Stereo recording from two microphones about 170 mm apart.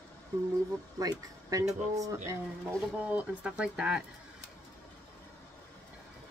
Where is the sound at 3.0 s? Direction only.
10° right (ahead or behind).